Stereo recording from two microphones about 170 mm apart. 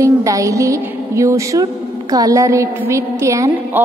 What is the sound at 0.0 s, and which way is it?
Music, 20° right (ahead or behind).